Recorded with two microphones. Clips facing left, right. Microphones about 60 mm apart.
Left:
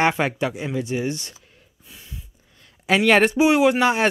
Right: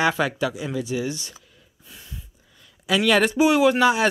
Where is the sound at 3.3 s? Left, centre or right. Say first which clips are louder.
Left 1 dB; left.